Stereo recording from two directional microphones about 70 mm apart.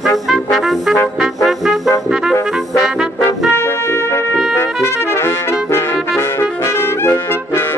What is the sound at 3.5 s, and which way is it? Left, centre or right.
Brass instrument, left.